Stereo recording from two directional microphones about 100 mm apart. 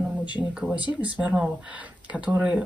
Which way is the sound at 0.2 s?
50° left (ahead or behind).